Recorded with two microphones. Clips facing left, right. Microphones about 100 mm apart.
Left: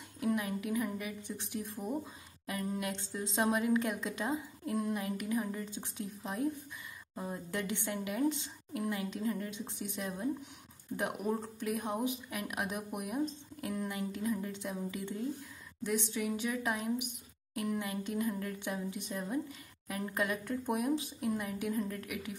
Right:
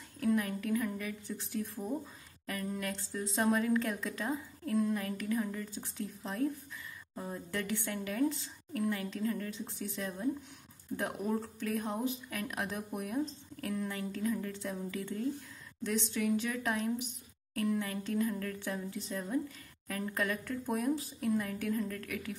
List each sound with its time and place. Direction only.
0.2 s speech: 20° left (ahead or behind)